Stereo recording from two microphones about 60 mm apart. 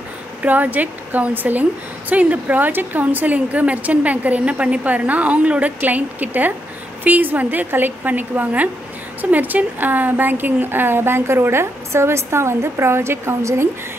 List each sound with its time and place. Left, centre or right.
0.4 s a woman's voice: right